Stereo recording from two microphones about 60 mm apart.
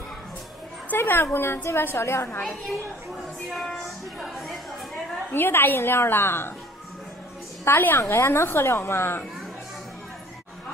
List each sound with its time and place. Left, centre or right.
0.9 s a woman's voice: left
3.4 s music: centre
5.3 s a woman's voice: left
7.7 s a woman's voice: left